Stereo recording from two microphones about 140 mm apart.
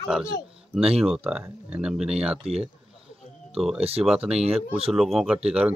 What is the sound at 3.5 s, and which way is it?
Speech, 5° right (ahead or behind).